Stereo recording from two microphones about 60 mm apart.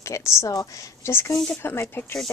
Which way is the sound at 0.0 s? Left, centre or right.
Left.